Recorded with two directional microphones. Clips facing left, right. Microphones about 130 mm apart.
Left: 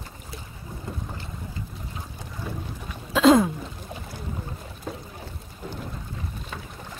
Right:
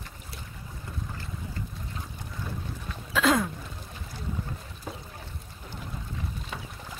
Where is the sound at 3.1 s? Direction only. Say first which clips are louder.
Left 8 dB; 25° left (ahead or behind).